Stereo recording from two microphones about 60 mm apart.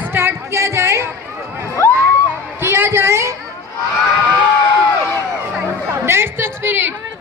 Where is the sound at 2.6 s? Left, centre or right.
Right.